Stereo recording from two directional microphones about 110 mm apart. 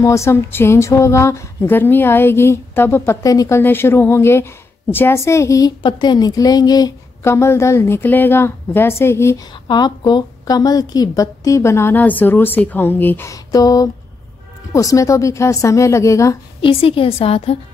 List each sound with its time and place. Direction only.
0.0 s speech: 25° left (ahead or behind)
5.8 s a woman's voice: 45° left (ahead or behind)
7.2 s speech: 25° left (ahead or behind)
9.7 s speech: 40° left (ahead or behind); by 13.3 s 20° left (ahead or behind)
13.3 s a woman's voice: 35° left (ahead or behind)
16.6 s a woman's voice: 55° left (ahead or behind)